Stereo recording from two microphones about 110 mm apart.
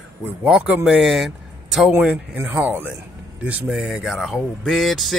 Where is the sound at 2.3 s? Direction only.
15° right (ahead or behind).